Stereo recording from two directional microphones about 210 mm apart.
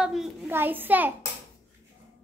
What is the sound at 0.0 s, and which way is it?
A child's voice, 5° right (ahead or behind).